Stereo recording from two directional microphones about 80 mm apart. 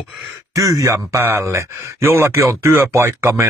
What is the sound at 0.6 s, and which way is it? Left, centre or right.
Speech, right.